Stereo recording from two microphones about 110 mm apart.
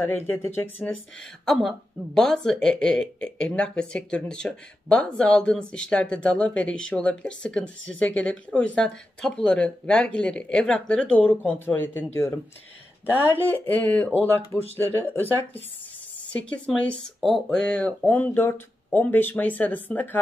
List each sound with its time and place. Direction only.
0.0 s speech: 20° left (ahead or behind)
1.4 s speech: centre (ahead or behind); by 12.4 s 25° left (ahead or behind)
13.5 s speech: 15° left (ahead or behind)